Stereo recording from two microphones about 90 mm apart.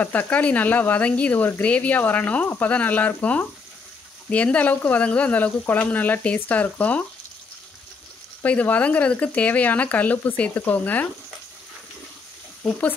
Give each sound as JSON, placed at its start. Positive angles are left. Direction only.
{"t": 0.0, "sound": "speech", "side_deg": 20}
{"t": 8.4, "sound": "speech", "side_deg": 15}